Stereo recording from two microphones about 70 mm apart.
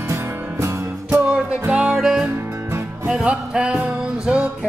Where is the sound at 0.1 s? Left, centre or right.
Right.